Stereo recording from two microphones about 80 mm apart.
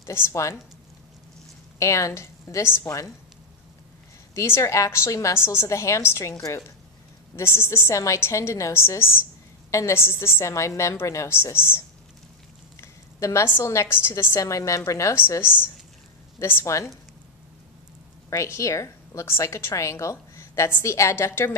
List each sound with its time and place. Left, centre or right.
0.1 s a woman's voice: left
1.8 s a woman's voice: left
4.4 s a woman's voice: left
13.2 s a woman's voice: left
16.6 s a woman's voice: left
18.3 s a woman's voice: left